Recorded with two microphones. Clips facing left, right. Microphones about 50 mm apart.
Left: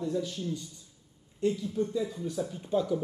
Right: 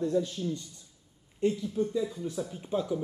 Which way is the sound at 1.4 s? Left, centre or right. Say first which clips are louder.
Right 1 dB; centre.